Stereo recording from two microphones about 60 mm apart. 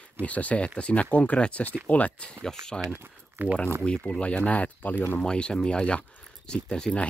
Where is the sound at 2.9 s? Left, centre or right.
Right.